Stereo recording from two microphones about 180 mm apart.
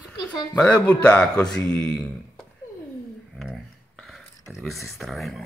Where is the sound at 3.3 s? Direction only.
Centre (ahead or behind).